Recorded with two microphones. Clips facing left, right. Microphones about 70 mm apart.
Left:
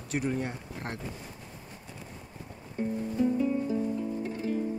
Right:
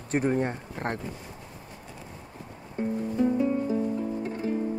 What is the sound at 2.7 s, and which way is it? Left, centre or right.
Music, right.